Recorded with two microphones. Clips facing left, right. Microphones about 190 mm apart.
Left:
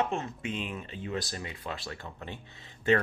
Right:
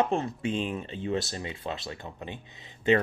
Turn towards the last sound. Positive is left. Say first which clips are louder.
# right 2 dB
turn(degrees=-20)  # may be behind; listen again after turning